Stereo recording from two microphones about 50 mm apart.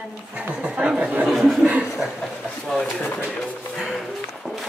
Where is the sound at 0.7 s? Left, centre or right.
Right.